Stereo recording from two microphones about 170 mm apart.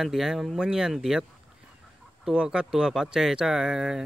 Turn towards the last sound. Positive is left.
turn(degrees=-5)  # may be behind; listen again after turning